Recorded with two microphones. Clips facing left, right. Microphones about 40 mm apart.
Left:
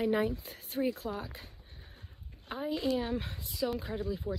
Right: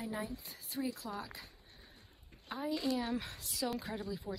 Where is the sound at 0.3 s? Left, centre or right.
Left.